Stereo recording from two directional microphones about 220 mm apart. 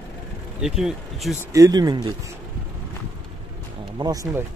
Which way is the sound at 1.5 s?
15° right (ahead or behind).